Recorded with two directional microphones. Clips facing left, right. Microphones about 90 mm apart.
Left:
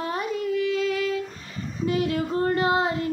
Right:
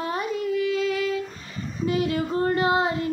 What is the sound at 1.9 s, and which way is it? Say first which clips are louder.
Female singing: even; 15° right (ahead or behind).